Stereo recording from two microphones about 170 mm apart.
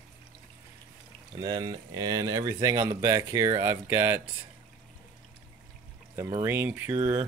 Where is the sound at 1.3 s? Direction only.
25° right (ahead or behind).